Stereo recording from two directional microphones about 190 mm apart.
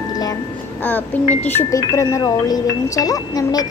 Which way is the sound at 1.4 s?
10° left (ahead or behind).